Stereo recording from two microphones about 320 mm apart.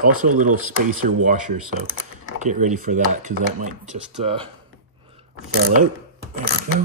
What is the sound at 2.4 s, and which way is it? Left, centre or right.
Speech, right.